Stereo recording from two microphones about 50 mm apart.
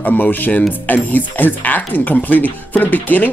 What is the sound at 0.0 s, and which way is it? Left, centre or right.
Speech, left.